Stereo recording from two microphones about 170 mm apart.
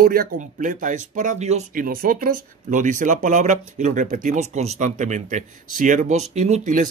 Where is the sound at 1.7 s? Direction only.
55° right (ahead or behind).